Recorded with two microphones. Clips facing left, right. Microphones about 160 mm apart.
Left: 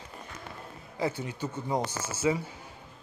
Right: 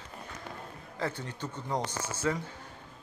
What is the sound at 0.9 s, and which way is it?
Speech, 10° left (ahead or behind).